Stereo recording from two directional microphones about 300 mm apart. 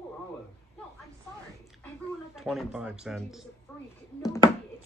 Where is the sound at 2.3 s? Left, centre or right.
Centre.